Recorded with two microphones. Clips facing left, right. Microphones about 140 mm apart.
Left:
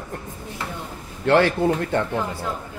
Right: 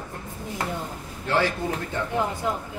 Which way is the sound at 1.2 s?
65° left (ahead or behind).